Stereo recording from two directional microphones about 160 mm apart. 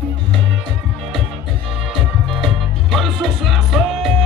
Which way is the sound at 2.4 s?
Centre (ahead or behind).